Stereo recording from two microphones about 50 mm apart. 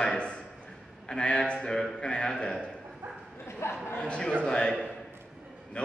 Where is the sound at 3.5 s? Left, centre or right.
Left.